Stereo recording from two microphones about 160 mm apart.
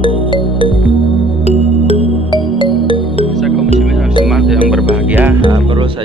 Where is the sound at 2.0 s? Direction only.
40° right (ahead or behind).